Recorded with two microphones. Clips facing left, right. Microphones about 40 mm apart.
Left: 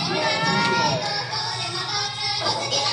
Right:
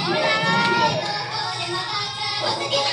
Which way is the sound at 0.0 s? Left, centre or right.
Right.